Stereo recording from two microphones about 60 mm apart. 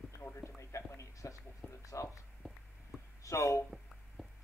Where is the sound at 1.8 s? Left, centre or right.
Left.